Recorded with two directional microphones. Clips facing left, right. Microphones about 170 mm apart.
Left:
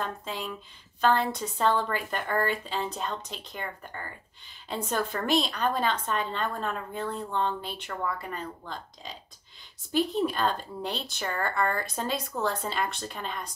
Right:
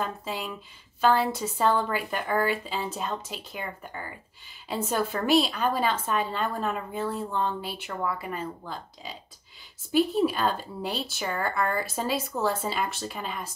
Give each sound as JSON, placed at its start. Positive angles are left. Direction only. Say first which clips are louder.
{"t": 0.0, "sound": "a woman's voice", "louder": "right 2 dB", "side_deg": -5}